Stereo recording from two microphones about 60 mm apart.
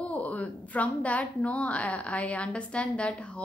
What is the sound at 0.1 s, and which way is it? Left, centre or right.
A woman's voice, left.